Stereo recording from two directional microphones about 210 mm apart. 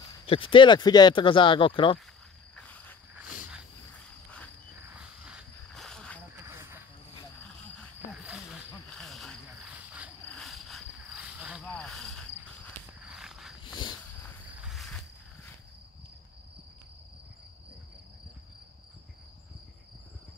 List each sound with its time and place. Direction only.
0.3 s speech: 25° left (ahead or behind)
2.5 s cricket: 5° left (ahead or behind)
4.9 s a sound: 5° right (ahead or behind)
6.4 s cricket: 10° right (ahead or behind)
7.4 s cricket: 5° left (ahead or behind)
14.6 s cricket: centre (ahead or behind)